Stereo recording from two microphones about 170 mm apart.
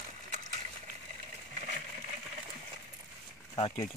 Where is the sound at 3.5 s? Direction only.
35° left (ahead or behind).